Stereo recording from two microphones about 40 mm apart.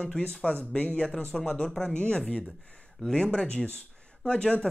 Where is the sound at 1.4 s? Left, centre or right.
Centre.